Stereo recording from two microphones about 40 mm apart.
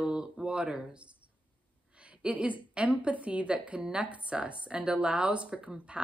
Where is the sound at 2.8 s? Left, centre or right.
Right.